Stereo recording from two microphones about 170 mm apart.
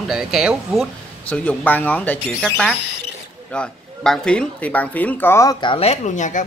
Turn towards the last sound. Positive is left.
turn(degrees=45)  # may be behind; listen again after turning